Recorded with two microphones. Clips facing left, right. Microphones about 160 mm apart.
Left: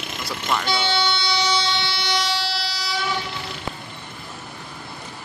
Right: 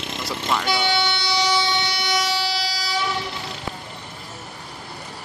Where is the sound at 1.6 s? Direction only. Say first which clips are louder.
Right 2 dB; 15° right (ahead or behind).